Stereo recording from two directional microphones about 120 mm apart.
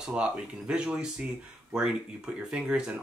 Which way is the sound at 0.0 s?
10° right (ahead or behind).